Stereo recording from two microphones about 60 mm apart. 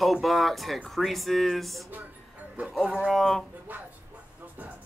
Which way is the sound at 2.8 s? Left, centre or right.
Centre.